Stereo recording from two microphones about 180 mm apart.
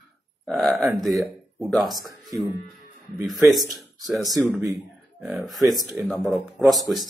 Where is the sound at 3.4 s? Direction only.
Centre (ahead or behind).